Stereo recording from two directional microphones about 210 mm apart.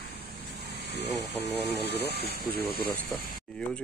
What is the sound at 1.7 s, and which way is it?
Vehicle, 50° left (ahead or behind).